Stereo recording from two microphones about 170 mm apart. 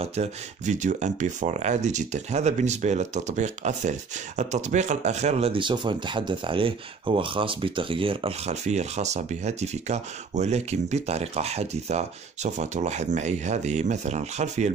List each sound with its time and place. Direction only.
0.0 s speech: 40° right (ahead or behind)